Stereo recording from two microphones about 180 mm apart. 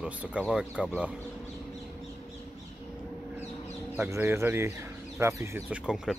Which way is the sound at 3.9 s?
15° right (ahead or behind).